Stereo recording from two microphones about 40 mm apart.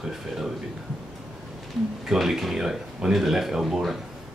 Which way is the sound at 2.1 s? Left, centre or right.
Centre.